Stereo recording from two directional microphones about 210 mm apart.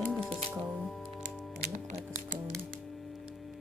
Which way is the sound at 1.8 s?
35° right (ahead or behind).